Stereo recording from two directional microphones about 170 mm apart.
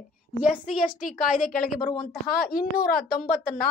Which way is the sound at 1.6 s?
60° left (ahead or behind).